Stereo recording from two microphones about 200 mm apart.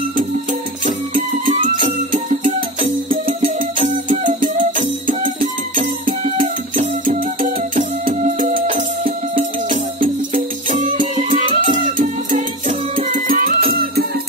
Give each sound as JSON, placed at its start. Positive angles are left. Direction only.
{"t": 1.4, "sound": "music", "side_deg": -35}
{"t": 3.8, "sound": "music", "side_deg": -40}